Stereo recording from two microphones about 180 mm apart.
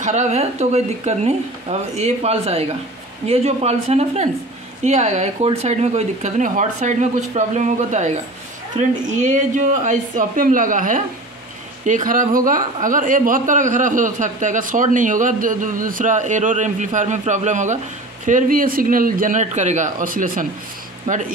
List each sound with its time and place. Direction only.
0.0 s speech: 40° right (ahead or behind)